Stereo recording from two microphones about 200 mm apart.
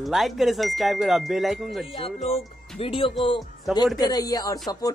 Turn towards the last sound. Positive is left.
turn(degrees=20)  # may be behind; listen again after turning